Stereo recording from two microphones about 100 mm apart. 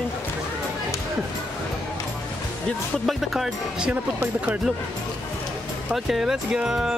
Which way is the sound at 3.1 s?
Centre (ahead or behind).